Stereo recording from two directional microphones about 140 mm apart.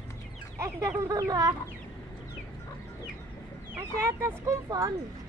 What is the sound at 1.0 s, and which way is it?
Speech, 20° right (ahead or behind).